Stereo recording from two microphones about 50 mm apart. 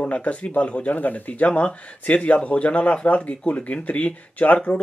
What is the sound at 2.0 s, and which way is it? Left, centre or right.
Speech, left.